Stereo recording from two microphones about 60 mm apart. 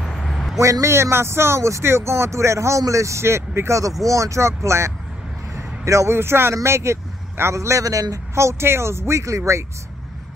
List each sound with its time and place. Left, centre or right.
0.0 s vehicle: centre
0.6 s speech: right
8.4 s speech: right